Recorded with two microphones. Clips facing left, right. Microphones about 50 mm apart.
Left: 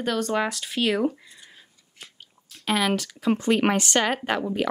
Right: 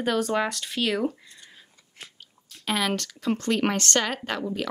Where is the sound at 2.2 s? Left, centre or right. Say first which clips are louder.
Left 1 dB; centre.